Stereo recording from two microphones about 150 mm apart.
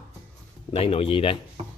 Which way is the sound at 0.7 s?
40° left (ahead or behind).